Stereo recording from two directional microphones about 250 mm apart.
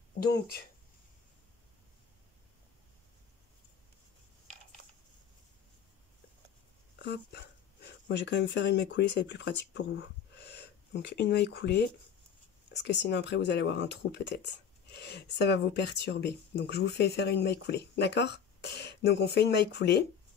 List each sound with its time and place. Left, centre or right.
0.3 s speech: left
7.0 s speech: left